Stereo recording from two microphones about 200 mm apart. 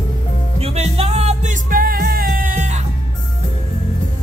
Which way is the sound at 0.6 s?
30° right (ahead or behind).